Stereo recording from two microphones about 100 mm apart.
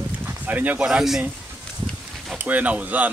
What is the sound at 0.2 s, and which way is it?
Speech, 15° right (ahead or behind).